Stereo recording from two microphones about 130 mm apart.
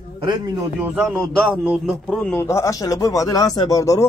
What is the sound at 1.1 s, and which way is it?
Speech, 10° right (ahead or behind).